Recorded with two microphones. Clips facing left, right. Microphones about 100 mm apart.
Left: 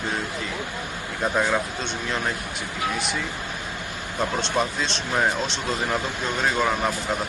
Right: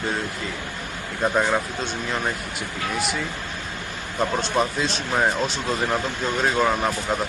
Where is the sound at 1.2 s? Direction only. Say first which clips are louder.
Right 2 dB; 10° right (ahead or behind).